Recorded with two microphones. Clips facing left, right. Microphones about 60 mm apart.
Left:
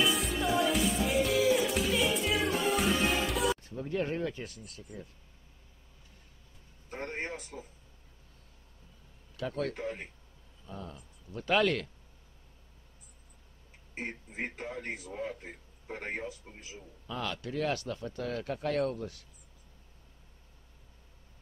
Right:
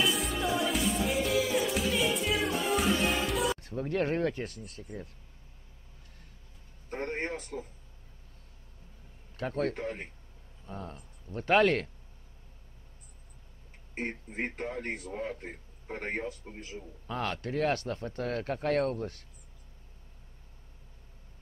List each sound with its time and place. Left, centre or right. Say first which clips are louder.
0.0 s music: even; centre
3.9 s a man's voice: right 3 dB; right
6.9 s speech: right 3 dB; right
9.4 s speech: right 2 dB; right
13.9 s a man's voice: right 3 dB; right